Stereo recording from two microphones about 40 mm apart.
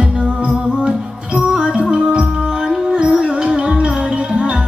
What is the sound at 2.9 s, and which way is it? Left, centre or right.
Music, right.